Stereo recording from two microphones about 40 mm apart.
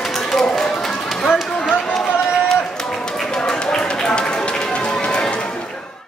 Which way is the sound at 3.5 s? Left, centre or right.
Centre.